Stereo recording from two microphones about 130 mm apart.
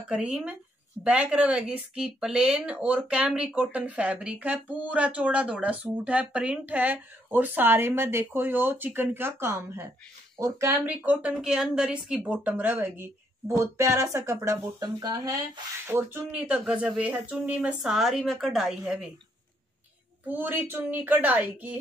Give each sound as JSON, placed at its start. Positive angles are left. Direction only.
{"t": 0.1, "sound": "a woman's voice", "side_deg": -10}
{"t": 15.9, "sound": "speech", "side_deg": -15}
{"t": 20.2, "sound": "speech", "side_deg": -15}